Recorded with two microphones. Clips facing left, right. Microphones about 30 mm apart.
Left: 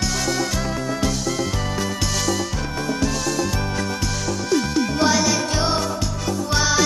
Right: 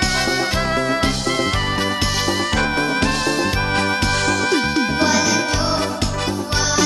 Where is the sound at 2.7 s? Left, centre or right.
Right.